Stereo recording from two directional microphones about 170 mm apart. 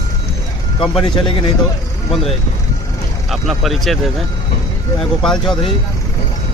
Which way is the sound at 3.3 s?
Centre (ahead or behind).